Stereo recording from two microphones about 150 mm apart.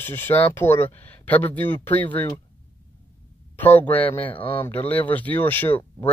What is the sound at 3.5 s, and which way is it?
Speech, 10° left (ahead or behind).